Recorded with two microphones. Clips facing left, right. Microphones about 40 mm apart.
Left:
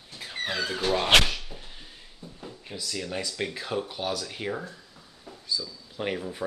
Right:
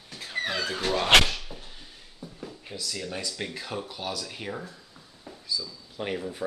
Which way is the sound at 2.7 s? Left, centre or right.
Centre.